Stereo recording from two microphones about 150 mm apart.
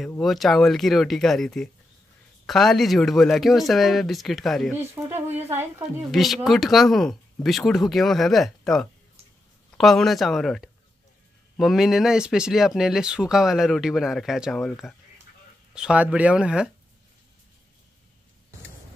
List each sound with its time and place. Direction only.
0.2 s speech: centre (ahead or behind)
5.0 s speech: 15° right (ahead or behind)
6.1 s speech: centre (ahead or behind)